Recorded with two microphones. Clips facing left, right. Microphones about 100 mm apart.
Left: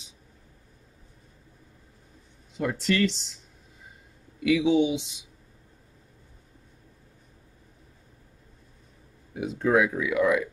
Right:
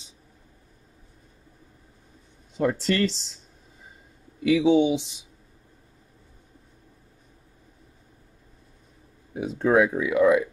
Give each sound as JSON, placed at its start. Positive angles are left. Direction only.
{"t": 2.5, "sound": "speech", "side_deg": -35}
{"t": 4.4, "sound": "speech", "side_deg": -35}
{"t": 9.3, "sound": "speech", "side_deg": -35}